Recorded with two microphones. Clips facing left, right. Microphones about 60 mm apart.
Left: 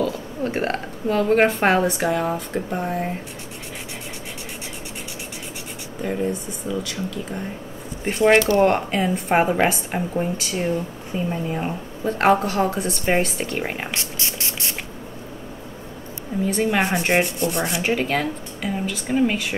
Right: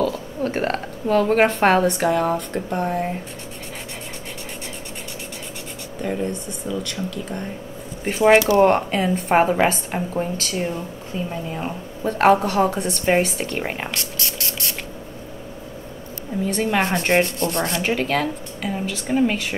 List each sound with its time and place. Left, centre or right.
0.0 s sanding: centre
6.7 s speech: centre
8.0 s sanding: centre
11.1 s speech: centre
12.0 s sanding: centre
13.9 s a sound: left
16.4 s sanding: centre